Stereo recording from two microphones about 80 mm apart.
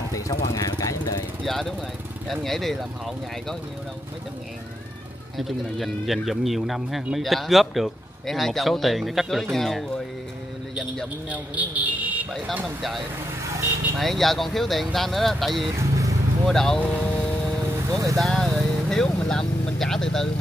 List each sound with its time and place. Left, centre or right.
0.1 s speech: left
1.4 s speech: centre
5.4 s speech: centre
11.2 s a man's voice: centre
12.6 s speech: centre
15.9 s vehicle: right
16.4 s speech: centre
17.0 s a sound: centre
17.9 s speech: right
18.2 s speech: centre